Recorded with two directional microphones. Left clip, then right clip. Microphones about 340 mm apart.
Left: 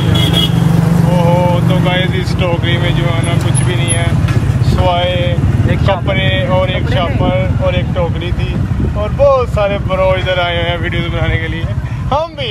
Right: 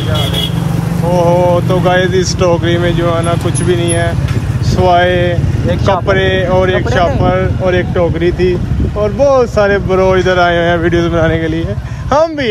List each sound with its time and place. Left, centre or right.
4.8 s speech: right
9.2 s speech: right